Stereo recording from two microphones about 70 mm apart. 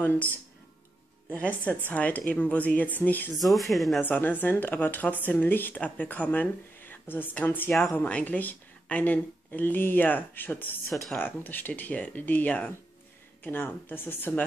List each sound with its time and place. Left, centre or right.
0.0 s speech: left
1.3 s speech: centre
3.3 s speech: centre
4.0 s speech: left